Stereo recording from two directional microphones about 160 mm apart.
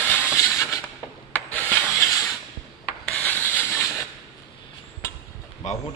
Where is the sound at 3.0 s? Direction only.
10° left (ahead or behind).